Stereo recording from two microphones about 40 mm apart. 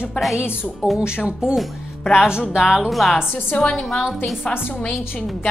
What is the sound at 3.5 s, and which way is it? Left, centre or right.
A woman's voice, left.